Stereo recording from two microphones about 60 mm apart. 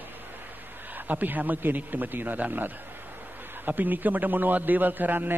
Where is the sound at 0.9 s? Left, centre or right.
Right.